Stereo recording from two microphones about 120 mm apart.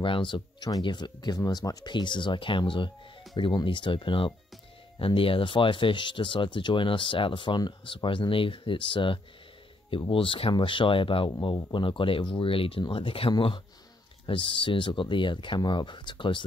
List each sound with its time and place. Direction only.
0.0 s speech: 45° left (ahead or behind)